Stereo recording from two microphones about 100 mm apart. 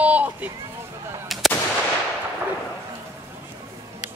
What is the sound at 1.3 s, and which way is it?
Gunshot, centre (ahead or behind).